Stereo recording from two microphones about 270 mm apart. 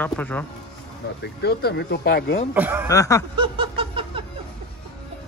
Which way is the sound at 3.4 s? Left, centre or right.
Centre.